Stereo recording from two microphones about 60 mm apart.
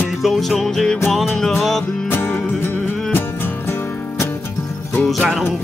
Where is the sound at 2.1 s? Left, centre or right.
Left.